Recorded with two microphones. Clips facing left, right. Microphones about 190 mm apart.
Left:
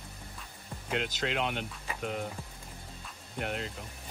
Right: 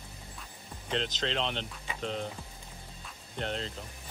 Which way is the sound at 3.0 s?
5° left (ahead or behind).